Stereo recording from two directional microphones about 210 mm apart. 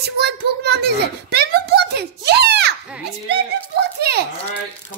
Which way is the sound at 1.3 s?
50° right (ahead or behind).